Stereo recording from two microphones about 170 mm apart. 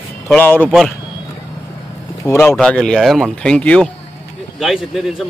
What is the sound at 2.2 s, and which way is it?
Speech, 15° left (ahead or behind).